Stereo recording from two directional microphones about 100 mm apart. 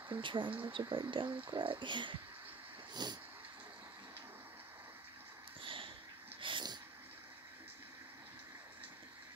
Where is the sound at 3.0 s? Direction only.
45° right (ahead or behind).